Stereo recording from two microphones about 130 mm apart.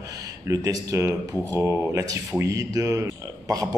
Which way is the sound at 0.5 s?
25° right (ahead or behind).